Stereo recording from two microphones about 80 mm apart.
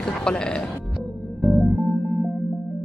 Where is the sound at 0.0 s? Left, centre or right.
Centre.